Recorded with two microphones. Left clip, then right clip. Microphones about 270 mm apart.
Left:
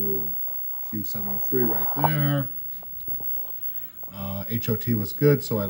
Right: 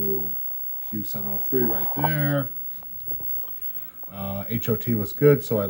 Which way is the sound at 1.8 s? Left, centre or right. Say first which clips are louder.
Left 2 dB; right.